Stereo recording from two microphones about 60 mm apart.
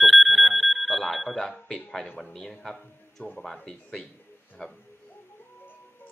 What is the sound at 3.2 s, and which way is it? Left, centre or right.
Speech, left.